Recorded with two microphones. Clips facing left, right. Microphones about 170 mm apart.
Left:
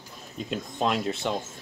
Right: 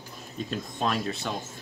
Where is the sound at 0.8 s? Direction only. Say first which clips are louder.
Left 3 dB; 20° left (ahead or behind).